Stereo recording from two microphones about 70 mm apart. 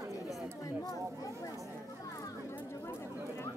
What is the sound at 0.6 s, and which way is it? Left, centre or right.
Chatter, left.